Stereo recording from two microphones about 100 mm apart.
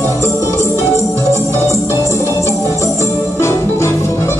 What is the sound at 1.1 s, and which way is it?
Organ, 30° right (ahead or behind).